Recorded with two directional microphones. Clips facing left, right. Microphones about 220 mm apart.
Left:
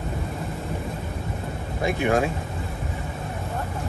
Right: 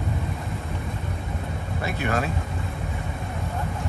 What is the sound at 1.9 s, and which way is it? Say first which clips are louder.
Speech: left 5 dB; 15° left (ahead or behind).